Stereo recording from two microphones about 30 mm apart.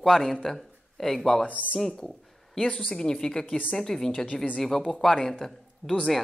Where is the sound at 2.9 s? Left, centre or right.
Left.